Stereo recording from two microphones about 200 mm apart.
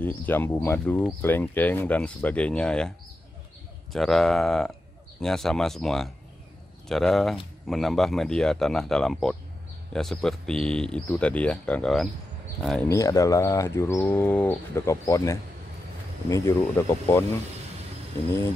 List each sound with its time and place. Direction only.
0.0 s speech: 10° left (ahead or behind)
3.9 s speech: centre (ahead or behind)
12.9 s speech: 15° left (ahead or behind)